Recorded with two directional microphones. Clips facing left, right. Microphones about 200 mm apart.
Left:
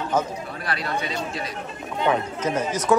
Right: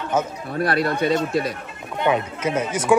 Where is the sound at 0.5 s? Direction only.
55° right (ahead or behind).